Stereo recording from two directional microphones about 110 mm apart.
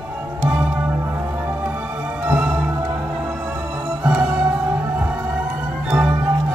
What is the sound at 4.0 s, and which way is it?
Music, 15° right (ahead or behind).